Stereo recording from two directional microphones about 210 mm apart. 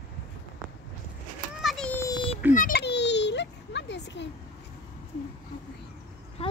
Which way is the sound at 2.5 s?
45° left (ahead or behind).